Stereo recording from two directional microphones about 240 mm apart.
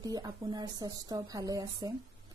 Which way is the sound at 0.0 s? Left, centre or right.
Centre.